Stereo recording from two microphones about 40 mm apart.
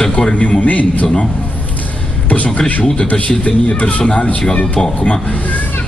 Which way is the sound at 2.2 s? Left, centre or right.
Left.